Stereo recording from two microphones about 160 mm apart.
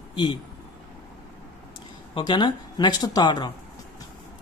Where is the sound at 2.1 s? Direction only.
30° left (ahead or behind).